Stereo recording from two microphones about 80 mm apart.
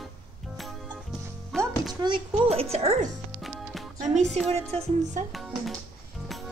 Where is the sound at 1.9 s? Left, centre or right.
Right.